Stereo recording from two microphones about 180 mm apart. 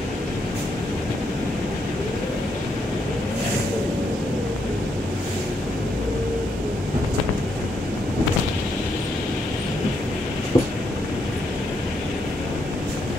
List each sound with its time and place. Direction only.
10.5 s train: 15° left (ahead or behind)